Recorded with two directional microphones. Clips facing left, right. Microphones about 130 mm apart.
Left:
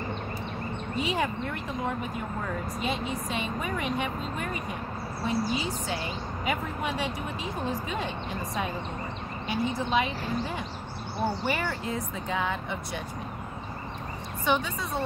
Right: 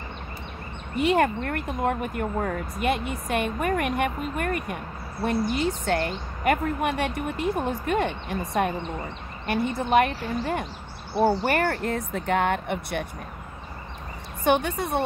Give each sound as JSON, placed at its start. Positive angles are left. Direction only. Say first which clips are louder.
{"t": 0.9, "sound": "speech", "louder": "right 8 dB", "side_deg": -60}
{"t": 14.4, "sound": "speech", "louder": "right 5 dB", "side_deg": -60}